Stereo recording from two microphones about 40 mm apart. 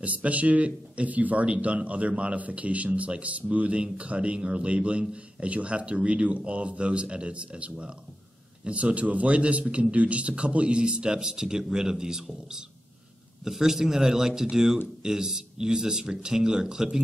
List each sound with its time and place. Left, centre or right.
0.0 s a man's voice: right; by 17.0 s centre